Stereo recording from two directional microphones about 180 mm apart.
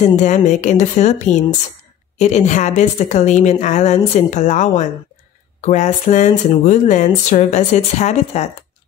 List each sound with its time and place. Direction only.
0.0 s a woman's voice: 40° left (ahead or behind)